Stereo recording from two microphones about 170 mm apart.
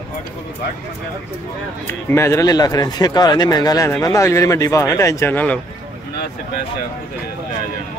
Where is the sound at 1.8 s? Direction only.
15° left (ahead or behind).